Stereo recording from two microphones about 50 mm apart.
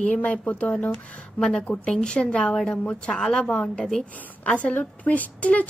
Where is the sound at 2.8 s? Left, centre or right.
Left.